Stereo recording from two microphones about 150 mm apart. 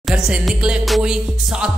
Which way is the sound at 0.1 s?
5° right (ahead or behind).